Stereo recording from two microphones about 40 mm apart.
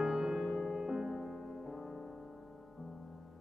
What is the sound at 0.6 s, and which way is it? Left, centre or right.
Music, centre.